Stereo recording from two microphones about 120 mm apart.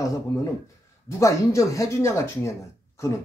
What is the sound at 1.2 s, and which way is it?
Speech, 25° left (ahead or behind).